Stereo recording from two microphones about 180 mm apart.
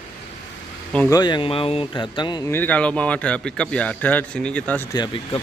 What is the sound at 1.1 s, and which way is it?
Speech, 25° left (ahead or behind).